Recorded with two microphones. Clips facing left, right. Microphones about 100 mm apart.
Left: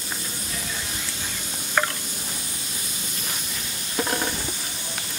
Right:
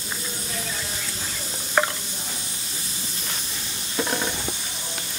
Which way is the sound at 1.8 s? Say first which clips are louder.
Right 2 dB; 15° right (ahead or behind).